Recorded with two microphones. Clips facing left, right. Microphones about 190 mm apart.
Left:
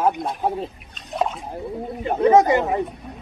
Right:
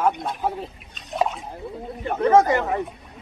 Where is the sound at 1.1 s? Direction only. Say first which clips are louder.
Even; centre (ahead or behind).